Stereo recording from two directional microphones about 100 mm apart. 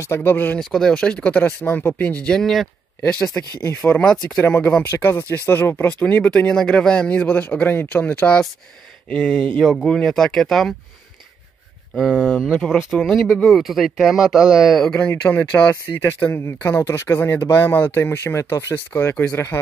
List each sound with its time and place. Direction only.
0.0 s speech: 25° left (ahead or behind)
0.6 s speech: 5° left (ahead or behind)
3.8 s speech: 15° left (ahead or behind)
12.0 s speech: 10° left (ahead or behind)
15.0 s speech: 20° left (ahead or behind)